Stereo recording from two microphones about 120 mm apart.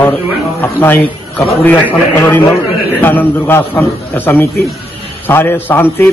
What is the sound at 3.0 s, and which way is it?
Speech, 15° left (ahead or behind).